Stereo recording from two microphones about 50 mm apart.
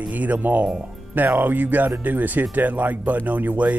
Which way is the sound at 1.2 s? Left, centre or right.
Right.